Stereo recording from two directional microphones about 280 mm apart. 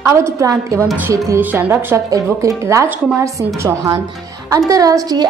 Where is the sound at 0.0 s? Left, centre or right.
Centre.